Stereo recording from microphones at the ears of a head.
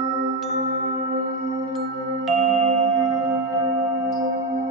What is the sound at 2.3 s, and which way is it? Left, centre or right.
Music, right.